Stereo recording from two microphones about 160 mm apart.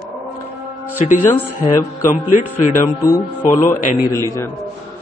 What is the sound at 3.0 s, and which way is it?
A man's voice, 20° left (ahead or behind).